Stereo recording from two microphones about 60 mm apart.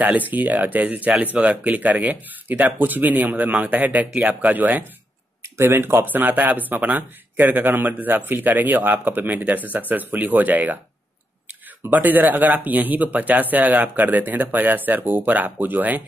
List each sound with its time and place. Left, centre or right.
0.0 s speech: right
5.6 s speech: right
11.9 s speech: right